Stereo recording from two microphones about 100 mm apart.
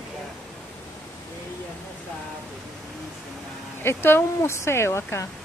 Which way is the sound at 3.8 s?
25° left (ahead or behind).